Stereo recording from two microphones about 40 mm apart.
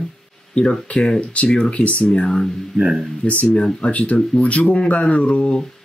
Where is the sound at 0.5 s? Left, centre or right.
Left.